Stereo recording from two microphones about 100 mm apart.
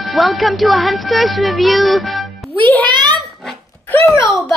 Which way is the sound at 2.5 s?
15° left (ahead or behind).